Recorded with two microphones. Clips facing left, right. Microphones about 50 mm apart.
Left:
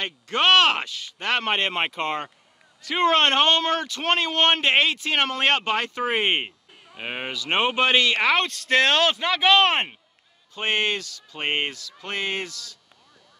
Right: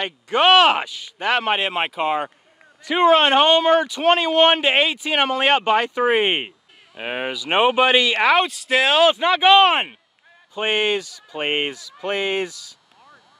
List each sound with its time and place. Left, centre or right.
0.0 s speech: centre